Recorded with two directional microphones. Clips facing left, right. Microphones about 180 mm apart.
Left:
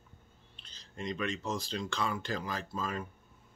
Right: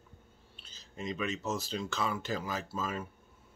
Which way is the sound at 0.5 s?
5° right (ahead or behind).